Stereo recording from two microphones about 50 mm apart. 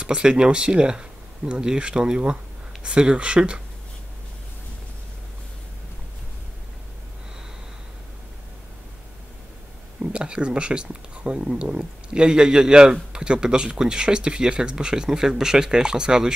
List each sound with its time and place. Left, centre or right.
0.0 s speech: centre
10.1 s speech: centre